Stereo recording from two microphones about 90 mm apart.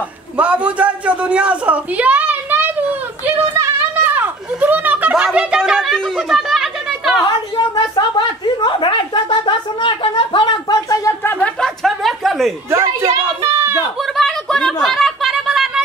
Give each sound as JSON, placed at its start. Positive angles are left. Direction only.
{"t": 0.4, "sound": "a woman's voice", "side_deg": -15}
{"t": 4.0, "sound": "children playing", "side_deg": -20}
{"t": 5.1, "sound": "speech", "side_deg": -10}
{"t": 5.8, "sound": "speech", "side_deg": 5}
{"t": 7.2, "sound": "a woman's voice", "side_deg": 55}
{"t": 11.3, "sound": "chuckle", "side_deg": 5}
{"t": 12.7, "sound": "a woman's voice", "side_deg": -30}
{"t": 14.1, "sound": "a sound", "side_deg": 5}